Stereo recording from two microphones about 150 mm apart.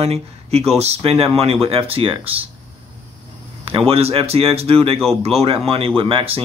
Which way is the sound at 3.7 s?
40° right (ahead or behind).